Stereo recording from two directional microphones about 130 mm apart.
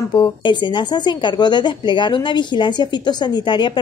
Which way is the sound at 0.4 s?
35° left (ahead or behind).